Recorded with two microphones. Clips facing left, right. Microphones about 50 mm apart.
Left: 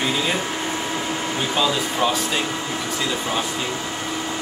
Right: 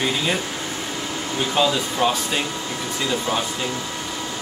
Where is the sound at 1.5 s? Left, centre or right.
Centre.